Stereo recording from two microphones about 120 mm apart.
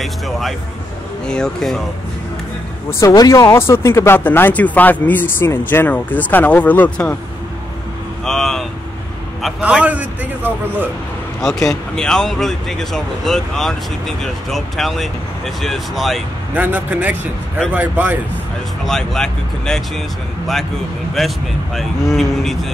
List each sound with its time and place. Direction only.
0.0 s speech: centre (ahead or behind)
2.9 s speech: 25° left (ahead or behind)
8.3 s vehicle: 5° left (ahead or behind)
9.6 s a man's voice: 10° right (ahead or behind)
11.4 s speech: 5° left (ahead or behind)
16.5 s a man's voice: 10° right (ahead or behind)
18.9 s speech: 5° left (ahead or behind)
21.2 s speech: centre (ahead or behind)